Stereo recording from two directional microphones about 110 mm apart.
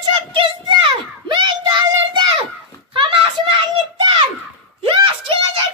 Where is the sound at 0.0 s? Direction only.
45° right (ahead or behind).